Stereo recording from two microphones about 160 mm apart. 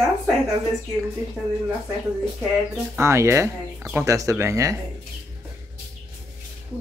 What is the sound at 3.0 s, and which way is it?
Speech, 15° right (ahead or behind).